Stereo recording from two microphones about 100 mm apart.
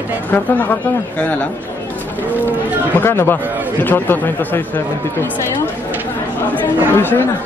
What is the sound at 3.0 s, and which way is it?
Speech, 25° left (ahead or behind).